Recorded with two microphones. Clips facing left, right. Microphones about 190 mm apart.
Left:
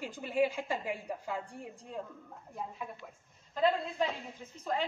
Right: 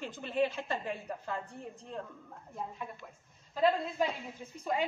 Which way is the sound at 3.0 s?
Centre (ahead or behind).